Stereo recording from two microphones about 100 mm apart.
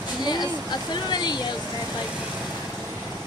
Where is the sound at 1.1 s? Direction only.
45° left (ahead or behind).